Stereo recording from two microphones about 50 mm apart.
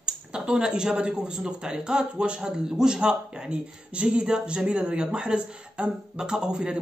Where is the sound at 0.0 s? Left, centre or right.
Centre.